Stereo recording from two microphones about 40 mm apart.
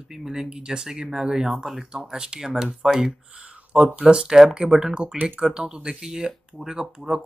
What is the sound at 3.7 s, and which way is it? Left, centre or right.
Speech, right.